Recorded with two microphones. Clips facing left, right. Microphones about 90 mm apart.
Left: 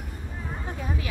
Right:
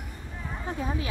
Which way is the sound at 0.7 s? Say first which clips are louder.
Right 3 dB; 25° right (ahead or behind).